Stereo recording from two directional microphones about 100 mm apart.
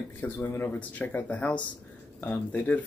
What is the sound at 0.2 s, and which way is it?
Speech, 25° left (ahead or behind).